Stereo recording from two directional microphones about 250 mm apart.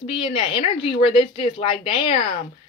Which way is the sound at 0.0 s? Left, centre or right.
Left.